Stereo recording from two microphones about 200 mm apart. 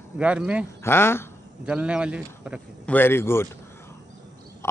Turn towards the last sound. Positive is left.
turn(degrees=10)  # may be behind; listen again after turning